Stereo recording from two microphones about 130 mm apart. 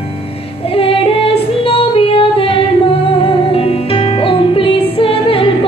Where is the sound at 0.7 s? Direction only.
45° left (ahead or behind).